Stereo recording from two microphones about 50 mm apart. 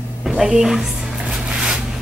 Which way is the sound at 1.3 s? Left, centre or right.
Centre.